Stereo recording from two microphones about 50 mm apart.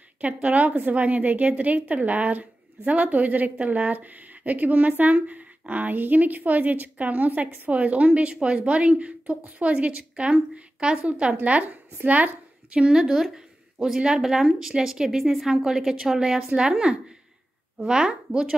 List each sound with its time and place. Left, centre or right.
0.2 s a woman's voice: right
12.7 s speech: centre